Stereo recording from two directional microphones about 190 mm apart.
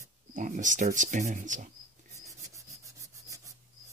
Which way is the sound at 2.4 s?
15° right (ahead or behind).